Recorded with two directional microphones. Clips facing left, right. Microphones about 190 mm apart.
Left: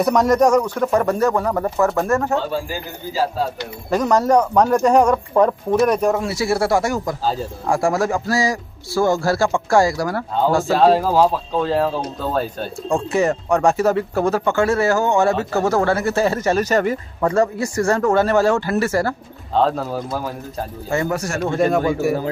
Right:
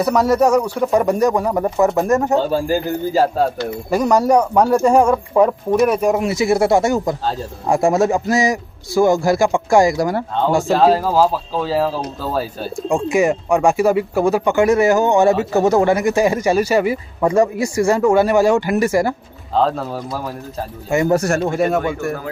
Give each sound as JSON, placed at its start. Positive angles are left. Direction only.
{"t": 0.0, "sound": "speech", "side_deg": -5}
{"t": 2.3, "sound": "a man's voice", "side_deg": -45}
{"t": 3.9, "sound": "a man's voice", "side_deg": -10}
{"t": 10.6, "sound": "speech", "side_deg": 0}
{"t": 19.5, "sound": "speech", "side_deg": 0}